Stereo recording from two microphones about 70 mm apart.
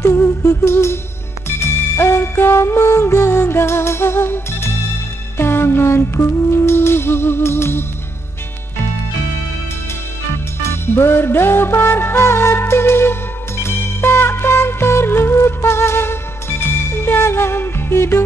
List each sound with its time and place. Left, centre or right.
0.0 s humming: left
0.7 s music: left
10.6 s music: left